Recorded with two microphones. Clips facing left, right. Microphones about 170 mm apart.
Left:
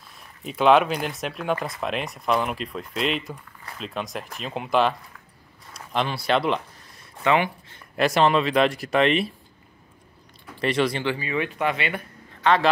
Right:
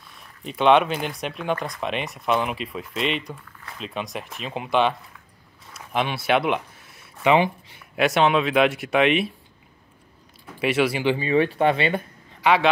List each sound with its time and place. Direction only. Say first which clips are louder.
0.4 s speech: even; centre (ahead or behind)
5.7 s a sound: right 1 dB; 5° right (ahead or behind)
7.2 s speech: right 3 dB; 20° right (ahead or behind)
7.7 s speech: left 1 dB; 5° right (ahead or behind)
10.6 s speech: right 1 dB; 5° right (ahead or behind)
11.1 s speech: right 6 dB; 30° right (ahead or behind)
12.4 s a man's voice: right 1 dB; 10° right (ahead or behind)